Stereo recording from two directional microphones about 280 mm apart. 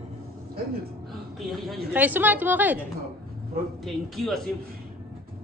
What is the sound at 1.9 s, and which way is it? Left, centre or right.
Speech, centre.